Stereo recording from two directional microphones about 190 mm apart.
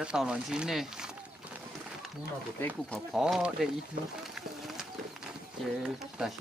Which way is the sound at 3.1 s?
5° right (ahead or behind).